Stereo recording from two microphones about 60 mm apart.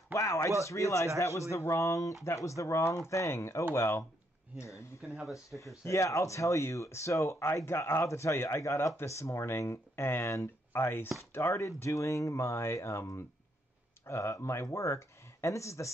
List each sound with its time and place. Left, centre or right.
0.1 s a sound: left
0.7 s speech: left
5.9 s speech: left
11.6 s speech: left